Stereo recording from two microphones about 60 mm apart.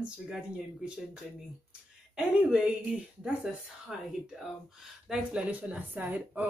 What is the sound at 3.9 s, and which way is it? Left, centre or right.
Speech, centre.